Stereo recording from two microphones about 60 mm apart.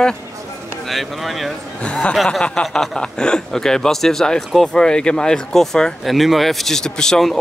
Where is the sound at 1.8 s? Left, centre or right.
Centre.